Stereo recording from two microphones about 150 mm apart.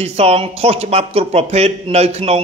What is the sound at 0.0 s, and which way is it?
Speech, 40° right (ahead or behind).